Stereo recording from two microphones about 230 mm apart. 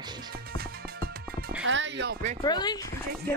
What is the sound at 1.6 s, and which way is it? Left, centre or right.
Speech, right.